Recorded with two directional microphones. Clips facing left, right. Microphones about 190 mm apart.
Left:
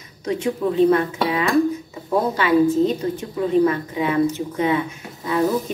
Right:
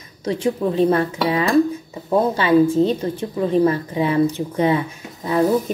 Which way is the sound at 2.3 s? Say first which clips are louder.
Right 1 dB; 30° right (ahead or behind).